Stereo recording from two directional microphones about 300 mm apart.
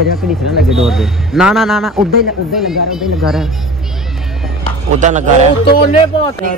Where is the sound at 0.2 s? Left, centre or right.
Centre.